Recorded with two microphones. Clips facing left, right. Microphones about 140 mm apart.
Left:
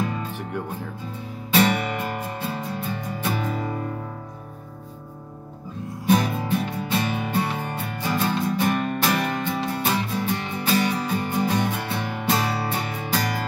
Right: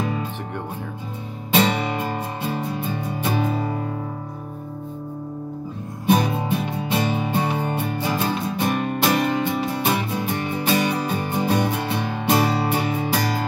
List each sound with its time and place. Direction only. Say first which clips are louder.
1.5 s music: right 1 dB; 20° right (ahead or behind)
6.0 s music: right 2 dB; 20° right (ahead or behind)